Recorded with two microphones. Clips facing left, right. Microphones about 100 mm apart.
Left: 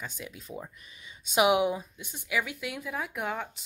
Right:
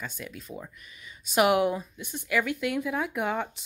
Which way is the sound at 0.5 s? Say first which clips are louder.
Even; 30° left (ahead or behind).